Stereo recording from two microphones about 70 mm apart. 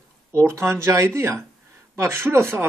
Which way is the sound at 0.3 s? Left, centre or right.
Right.